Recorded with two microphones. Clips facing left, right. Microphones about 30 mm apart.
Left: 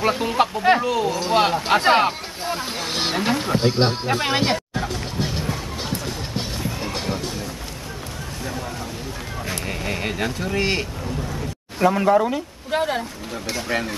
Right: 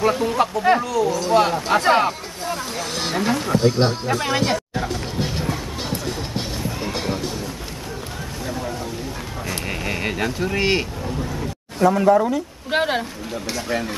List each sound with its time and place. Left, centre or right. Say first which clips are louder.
0.1 s speech: right 1 dB; centre
4.7 s music: right 1 dB; centre
8.5 s a sound: right 3 dB; centre
9.7 s speech: right 2 dB; centre
11.8 s speech: right 1 dB; centre
12.7 s speech: right 2 dB; right
13.6 s speech: even; centre